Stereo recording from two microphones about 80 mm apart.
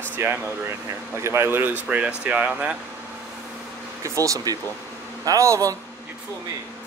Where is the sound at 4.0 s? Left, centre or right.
Right.